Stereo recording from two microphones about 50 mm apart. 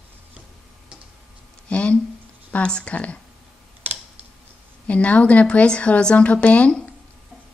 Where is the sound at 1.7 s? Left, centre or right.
Left.